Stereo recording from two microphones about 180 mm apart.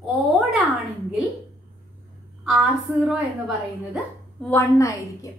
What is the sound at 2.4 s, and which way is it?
A woman's voice, centre (ahead or behind).